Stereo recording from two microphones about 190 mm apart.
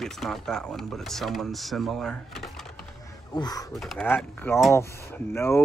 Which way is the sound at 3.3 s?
20° left (ahead or behind).